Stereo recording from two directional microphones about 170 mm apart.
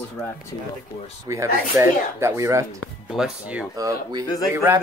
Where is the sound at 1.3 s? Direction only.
15° right (ahead or behind).